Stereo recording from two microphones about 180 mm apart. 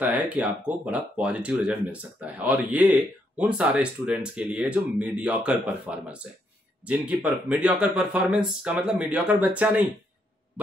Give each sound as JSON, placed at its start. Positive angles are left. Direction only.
{"t": 0.0, "sound": "speech", "side_deg": -10}